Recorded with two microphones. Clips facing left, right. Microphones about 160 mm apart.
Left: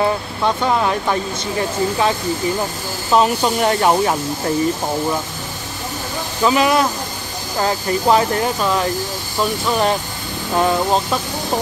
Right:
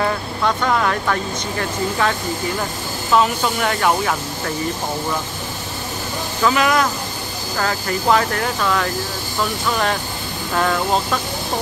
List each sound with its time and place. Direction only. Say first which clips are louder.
0.0 s speech: left 2 dB; 20° left (ahead or behind)
6.4 s speech: left 2 dB; 25° left (ahead or behind)